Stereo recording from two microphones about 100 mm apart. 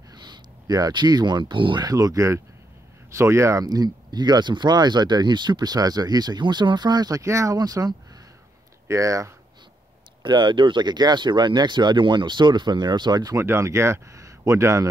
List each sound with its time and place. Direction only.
0.1 s speech: 45° right (ahead or behind)
1.9 s speech: 35° right (ahead or behind)
3.6 s speech: 40° right (ahead or behind)
10.2 s speech: 50° right (ahead or behind); by 14.9 s 30° right (ahead or behind)